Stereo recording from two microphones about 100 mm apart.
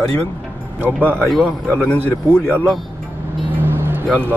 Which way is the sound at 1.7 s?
15° left (ahead or behind).